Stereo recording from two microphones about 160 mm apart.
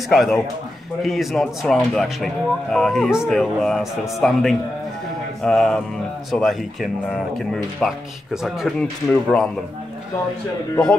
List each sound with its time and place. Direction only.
0.1 s speech: centre (ahead or behind)